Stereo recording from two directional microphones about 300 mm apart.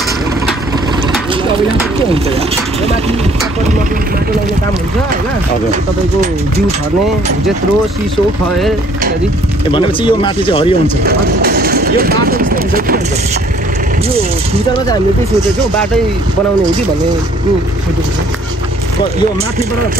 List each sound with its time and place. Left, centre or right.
9.7 s speech: centre
11.1 s speech: right